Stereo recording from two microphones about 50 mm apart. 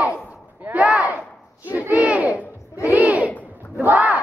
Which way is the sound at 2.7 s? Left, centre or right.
Left.